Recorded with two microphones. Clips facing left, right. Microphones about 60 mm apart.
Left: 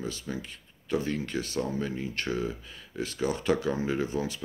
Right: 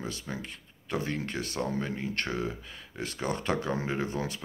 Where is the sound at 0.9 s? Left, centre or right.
Right.